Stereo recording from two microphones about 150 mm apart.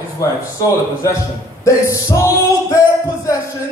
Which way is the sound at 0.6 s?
20° left (ahead or behind).